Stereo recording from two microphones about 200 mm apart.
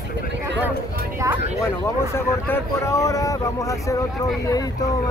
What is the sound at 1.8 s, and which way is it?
Speech, 15° left (ahead or behind).